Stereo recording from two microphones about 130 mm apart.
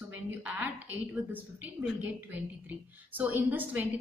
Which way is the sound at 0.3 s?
10° right (ahead or behind).